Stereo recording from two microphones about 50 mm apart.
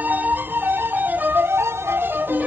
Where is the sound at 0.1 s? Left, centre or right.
Right.